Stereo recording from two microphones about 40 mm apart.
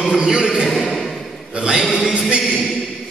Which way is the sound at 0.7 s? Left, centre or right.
Centre.